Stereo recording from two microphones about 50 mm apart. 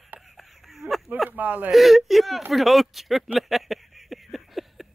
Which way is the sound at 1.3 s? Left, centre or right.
Right.